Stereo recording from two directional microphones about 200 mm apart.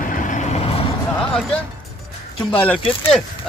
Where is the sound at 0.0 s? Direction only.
40° left (ahead or behind).